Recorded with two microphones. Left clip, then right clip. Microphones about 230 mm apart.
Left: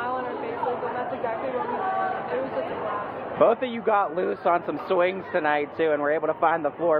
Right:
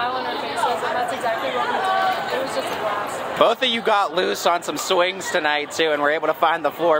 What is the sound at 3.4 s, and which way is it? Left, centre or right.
Speech, right.